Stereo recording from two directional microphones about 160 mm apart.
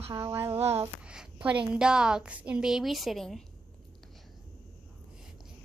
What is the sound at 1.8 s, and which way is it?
A woman's voice, 5° right (ahead or behind).